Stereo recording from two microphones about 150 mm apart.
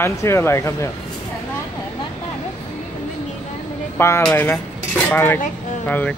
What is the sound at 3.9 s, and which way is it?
Speech, 15° left (ahead or behind).